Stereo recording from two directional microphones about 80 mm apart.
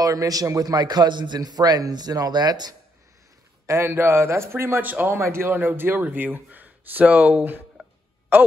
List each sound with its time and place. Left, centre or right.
0.0 s a man's voice: right
3.6 s a man's voice: right